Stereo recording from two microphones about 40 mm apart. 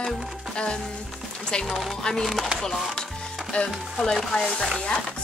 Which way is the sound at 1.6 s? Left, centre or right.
Centre.